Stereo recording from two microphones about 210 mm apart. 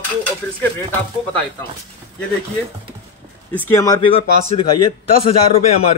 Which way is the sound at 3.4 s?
10° left (ahead or behind).